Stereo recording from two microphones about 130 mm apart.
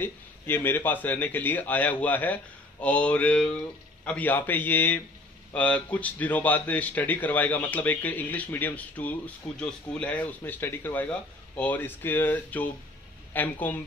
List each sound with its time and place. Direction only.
0.0 s a man's voice: 15° left (ahead or behind)